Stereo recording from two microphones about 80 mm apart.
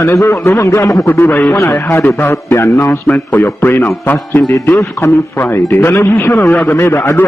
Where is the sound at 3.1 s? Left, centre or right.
Left.